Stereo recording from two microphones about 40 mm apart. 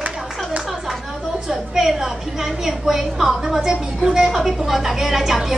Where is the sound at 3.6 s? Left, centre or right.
Centre.